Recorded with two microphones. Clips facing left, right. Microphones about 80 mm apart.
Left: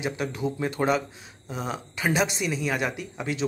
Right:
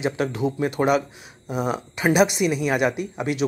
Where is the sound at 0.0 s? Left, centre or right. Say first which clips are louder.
Right 5 dB; right.